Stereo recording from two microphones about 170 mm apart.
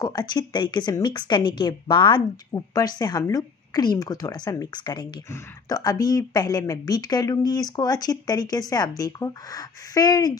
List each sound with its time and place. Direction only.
0.0 s a woman's voice: 25° left (ahead or behind)